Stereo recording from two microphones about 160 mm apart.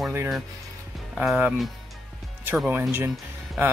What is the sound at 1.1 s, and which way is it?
Speech, 10° right (ahead or behind).